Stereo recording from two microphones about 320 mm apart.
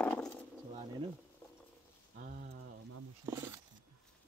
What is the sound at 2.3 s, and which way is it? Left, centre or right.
Speech, right.